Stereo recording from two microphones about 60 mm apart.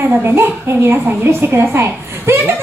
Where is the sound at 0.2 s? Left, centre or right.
Right.